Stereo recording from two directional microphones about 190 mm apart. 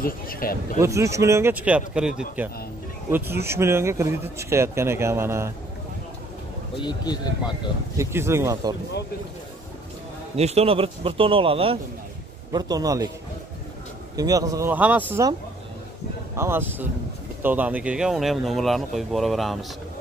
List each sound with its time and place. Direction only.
0.0 s speech: 50° left (ahead or behind)
0.7 s speech: 15° right (ahead or behind)
6.8 s speech: 20° left (ahead or behind)
8.0 s speech: 15° right (ahead or behind)
10.3 s a man's voice: 35° right (ahead or behind)
14.1 s speech: 20° right (ahead or behind)
16.3 s speech: 10° right (ahead or behind)